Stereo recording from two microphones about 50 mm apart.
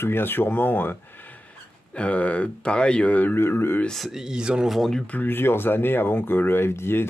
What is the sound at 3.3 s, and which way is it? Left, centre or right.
Speech, left.